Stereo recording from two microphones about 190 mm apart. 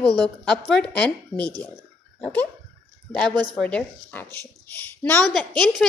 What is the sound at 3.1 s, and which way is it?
A woman's voice, 5° left (ahead or behind).